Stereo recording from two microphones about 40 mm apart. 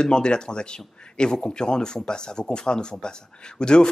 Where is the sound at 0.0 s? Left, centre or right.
Left.